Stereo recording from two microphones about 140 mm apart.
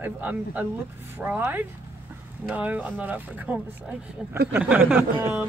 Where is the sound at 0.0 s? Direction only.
10° right (ahead or behind).